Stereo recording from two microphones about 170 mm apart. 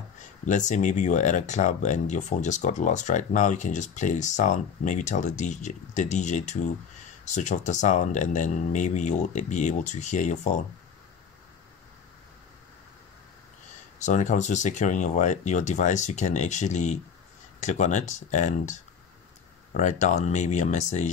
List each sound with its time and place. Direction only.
0.5 s speech: 45° left (ahead or behind)
13.9 s speech: 45° left (ahead or behind)
19.8 s speech: 45° left (ahead or behind)